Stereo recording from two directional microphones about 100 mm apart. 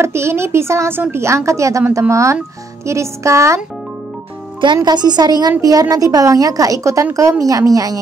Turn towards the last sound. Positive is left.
turn(degrees=-35)  # may be behind; listen again after turning